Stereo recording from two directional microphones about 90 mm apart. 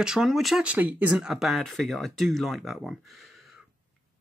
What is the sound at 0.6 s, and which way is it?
Speech, 15° right (ahead or behind).